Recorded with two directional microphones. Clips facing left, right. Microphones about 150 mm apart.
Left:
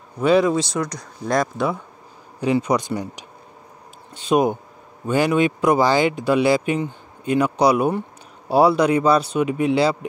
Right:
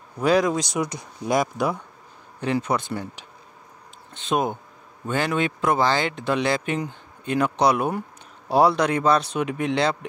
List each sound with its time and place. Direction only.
0.2 s speech: centre (ahead or behind)
0.7 s speech: 20° right (ahead or behind)
1.2 s speech: 5° right (ahead or behind)
2.4 s speech: 10° left (ahead or behind)